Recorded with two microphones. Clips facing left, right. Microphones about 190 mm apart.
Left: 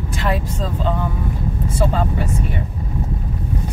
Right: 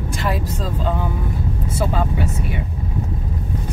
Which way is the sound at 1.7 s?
5° right (ahead or behind).